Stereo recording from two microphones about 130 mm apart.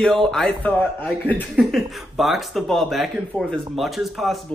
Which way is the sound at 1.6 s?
Centre (ahead or behind).